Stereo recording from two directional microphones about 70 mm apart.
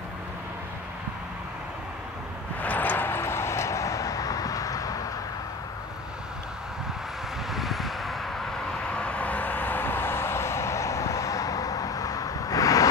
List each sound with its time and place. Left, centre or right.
2.6 s vehicle: left
7.5 s vehicle: centre
8.9 s vehicle: centre; by 12.9 s left